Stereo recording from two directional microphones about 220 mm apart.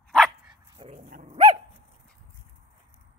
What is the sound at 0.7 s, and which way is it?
Dog, 25° right (ahead or behind).